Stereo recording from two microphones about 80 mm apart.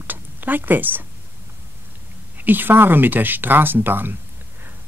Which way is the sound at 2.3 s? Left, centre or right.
Right.